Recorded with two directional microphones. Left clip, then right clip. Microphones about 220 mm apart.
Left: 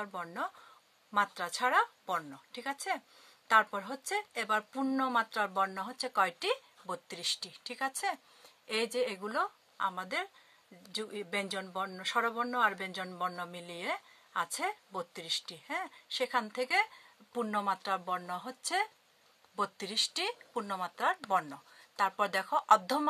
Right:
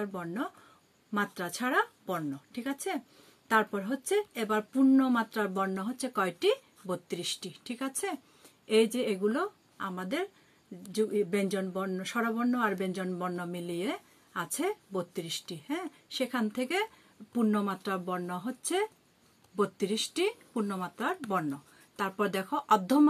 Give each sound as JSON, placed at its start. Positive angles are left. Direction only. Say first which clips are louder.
{"t": 0.0, "sound": "speech", "louder": "right 2 dB", "side_deg": 35}